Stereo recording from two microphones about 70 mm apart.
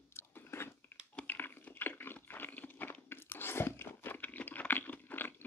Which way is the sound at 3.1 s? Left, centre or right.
Left.